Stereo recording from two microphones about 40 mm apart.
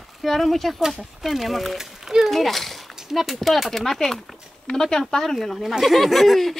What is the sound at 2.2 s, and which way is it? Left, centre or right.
Speech, centre.